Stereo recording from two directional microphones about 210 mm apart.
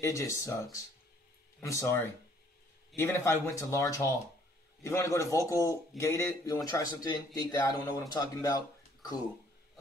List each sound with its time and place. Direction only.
0.0 s a man's voice: 15° left (ahead or behind)